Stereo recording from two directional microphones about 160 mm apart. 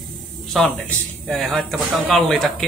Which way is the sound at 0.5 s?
Centre (ahead or behind).